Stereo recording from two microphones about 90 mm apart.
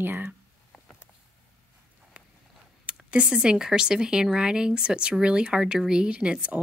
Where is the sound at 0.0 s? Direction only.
25° right (ahead or behind).